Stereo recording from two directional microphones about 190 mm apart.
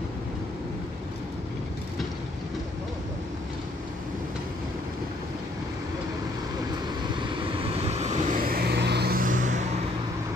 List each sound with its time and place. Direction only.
7.1 s vehicle: 25° right (ahead or behind); by 9.7 s 40° right (ahead or behind)